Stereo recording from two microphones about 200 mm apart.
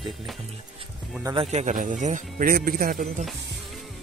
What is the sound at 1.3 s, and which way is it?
Speech, 30° right (ahead or behind).